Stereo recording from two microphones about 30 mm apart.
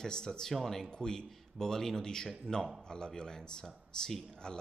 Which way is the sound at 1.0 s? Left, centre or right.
Left.